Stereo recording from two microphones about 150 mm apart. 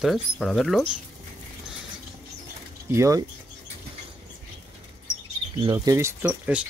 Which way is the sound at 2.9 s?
20° right (ahead or behind).